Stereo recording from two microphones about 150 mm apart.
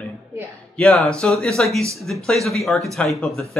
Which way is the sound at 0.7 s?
10° left (ahead or behind).